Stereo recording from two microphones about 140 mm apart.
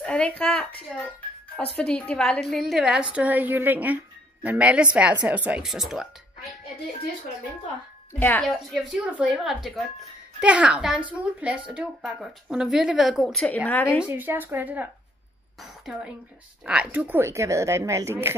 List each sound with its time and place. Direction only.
0.0 s a woman's voice: 10° left (ahead or behind)
8.1 s a woman's voice: 15° left (ahead or behind)
8.9 s a woman's voice: 10° right (ahead or behind); by 14.0 s 15° left (ahead or behind)
14.0 s a woman's voice: 15° right (ahead or behind)
15.9 s a woman's voice: 5° right (ahead or behind)